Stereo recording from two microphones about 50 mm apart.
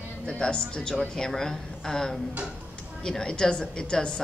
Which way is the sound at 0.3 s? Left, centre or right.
Centre.